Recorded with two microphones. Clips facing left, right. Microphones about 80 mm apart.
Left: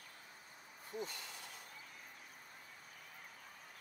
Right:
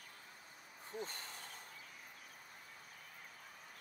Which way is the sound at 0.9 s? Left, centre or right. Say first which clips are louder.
Left 1 dB; right.